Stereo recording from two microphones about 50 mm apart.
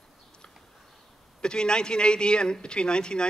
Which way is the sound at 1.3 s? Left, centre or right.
Centre.